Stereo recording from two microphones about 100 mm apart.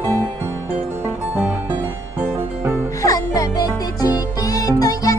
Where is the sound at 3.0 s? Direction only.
35° left (ahead or behind).